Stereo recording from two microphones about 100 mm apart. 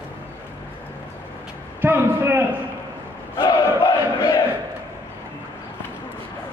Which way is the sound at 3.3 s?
60° left (ahead or behind).